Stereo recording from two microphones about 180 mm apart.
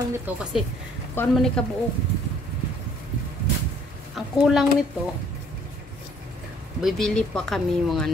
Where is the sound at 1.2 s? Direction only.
10° left (ahead or behind).